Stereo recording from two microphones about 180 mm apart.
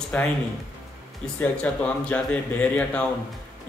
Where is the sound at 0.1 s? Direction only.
10° left (ahead or behind).